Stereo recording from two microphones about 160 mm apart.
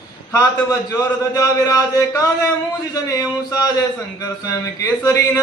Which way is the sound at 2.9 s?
20° left (ahead or behind).